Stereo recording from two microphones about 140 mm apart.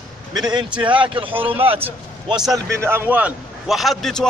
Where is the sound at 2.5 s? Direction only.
20° right (ahead or behind); by 4.3 s 5° left (ahead or behind).